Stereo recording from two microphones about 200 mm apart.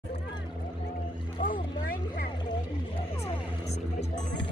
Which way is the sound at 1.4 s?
45° left (ahead or behind).